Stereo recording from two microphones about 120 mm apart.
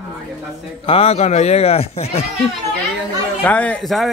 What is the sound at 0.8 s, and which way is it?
Speech, 50° left (ahead or behind).